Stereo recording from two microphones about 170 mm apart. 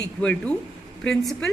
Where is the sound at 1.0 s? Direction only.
5° left (ahead or behind).